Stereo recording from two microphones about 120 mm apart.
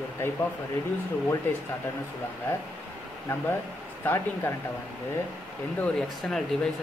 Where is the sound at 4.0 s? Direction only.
20° left (ahead or behind).